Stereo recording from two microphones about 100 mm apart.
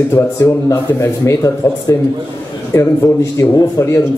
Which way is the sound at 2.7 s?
30° left (ahead or behind).